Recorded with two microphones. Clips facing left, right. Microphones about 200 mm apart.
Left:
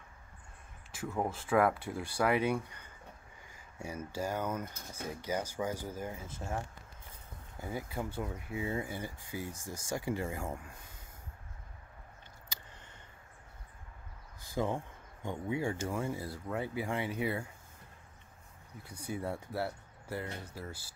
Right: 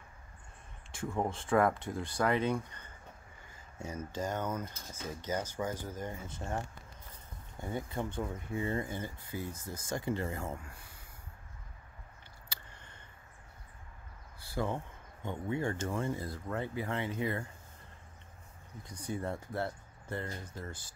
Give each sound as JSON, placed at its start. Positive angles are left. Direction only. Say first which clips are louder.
{"t": 0.9, "sound": "speech", "louder": "right 1 dB", "side_deg": 5}
{"t": 14.4, "sound": "a sound", "louder": "left 1 dB", "side_deg": 15}
{"t": 15.2, "sound": "speech", "louder": "even", "side_deg": 10}
{"t": 18.8, "sound": "speech", "louder": "right 1 dB", "side_deg": 10}